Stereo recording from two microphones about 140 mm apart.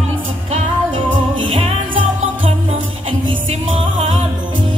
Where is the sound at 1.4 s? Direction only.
40° right (ahead or behind).